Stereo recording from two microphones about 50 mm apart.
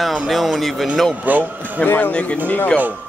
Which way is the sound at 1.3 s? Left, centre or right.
Right.